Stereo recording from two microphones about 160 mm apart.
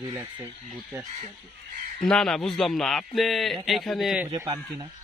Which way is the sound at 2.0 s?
5° left (ahead or behind).